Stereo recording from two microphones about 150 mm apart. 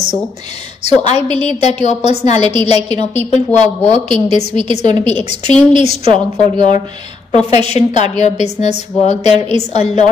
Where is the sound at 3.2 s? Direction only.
50° left (ahead or behind).